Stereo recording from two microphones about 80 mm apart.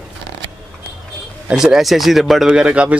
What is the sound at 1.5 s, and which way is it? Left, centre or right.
Speech, centre.